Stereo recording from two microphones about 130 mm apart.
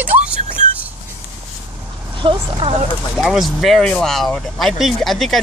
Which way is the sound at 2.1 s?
40° right (ahead or behind).